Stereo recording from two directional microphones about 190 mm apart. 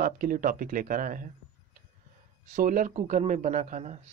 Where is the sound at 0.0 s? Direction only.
45° right (ahead or behind).